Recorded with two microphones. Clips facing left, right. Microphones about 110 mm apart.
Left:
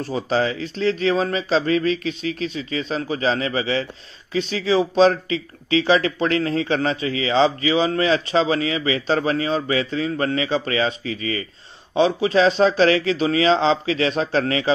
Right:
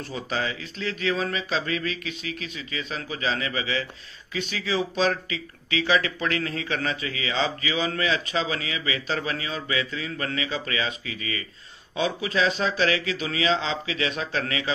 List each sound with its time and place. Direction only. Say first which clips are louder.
0.1 s speech: left 8 dB; 35° left (ahead or behind)